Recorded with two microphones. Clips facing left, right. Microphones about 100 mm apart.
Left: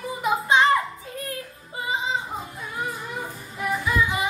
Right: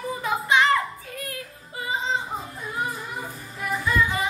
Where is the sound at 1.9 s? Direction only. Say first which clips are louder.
Even; 10° left (ahead or behind).